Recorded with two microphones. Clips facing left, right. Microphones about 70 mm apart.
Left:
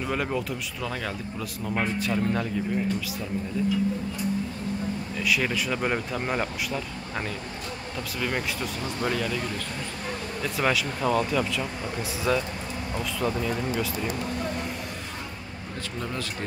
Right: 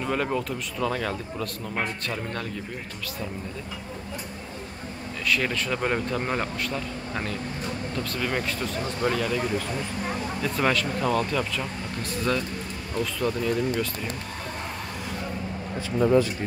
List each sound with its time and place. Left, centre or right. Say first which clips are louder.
0.0 s a man's voice: right 2 dB; centre
5.3 s speech: right 1 dB; centre
10.4 s a man's voice: right 1 dB; centre
16.0 s speech: right 14 dB; centre